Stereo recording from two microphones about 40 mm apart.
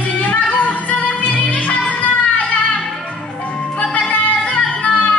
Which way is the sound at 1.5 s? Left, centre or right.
Left.